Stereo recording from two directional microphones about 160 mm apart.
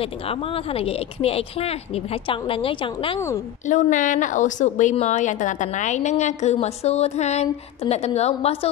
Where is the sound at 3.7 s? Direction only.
50° left (ahead or behind).